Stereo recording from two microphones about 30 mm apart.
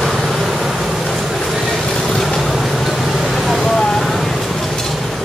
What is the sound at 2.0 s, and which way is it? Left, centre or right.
Vehicle, centre.